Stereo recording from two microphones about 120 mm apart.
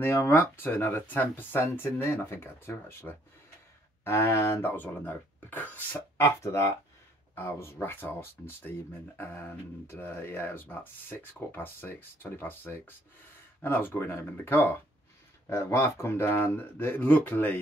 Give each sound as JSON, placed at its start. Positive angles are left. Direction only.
{"t": 0.0, "sound": "speech", "side_deg": 20}